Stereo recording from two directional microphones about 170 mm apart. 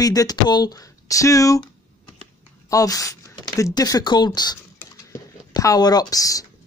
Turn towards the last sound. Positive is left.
turn(degrees=20)  # may be behind; listen again after turning